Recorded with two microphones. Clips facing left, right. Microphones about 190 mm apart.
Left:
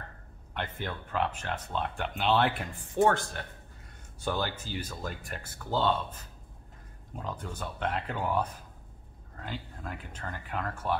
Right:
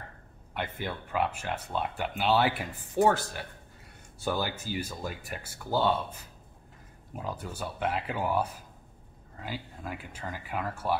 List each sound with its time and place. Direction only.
0.6 s speech: 10° right (ahead or behind)